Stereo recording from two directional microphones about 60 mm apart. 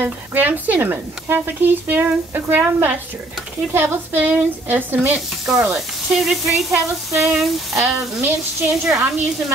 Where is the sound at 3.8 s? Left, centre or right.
Right.